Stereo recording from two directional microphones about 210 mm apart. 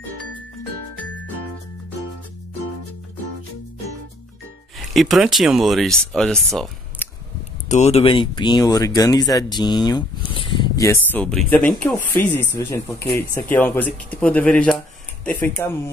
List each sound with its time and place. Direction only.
4.7 s speech: centre (ahead or behind)
7.6 s speech: 35° left (ahead or behind); by 15.9 s 10° left (ahead or behind)